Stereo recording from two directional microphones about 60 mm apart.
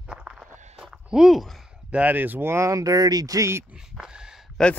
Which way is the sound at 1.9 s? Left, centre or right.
Right.